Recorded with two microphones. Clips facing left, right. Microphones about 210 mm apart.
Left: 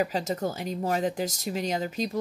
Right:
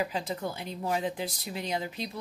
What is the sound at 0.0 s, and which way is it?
Speech, 45° left (ahead or behind).